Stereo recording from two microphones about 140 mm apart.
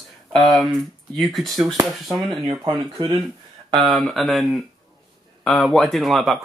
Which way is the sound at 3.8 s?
Centre (ahead or behind).